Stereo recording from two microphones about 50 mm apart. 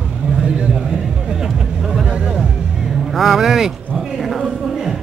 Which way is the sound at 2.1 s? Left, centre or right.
Right.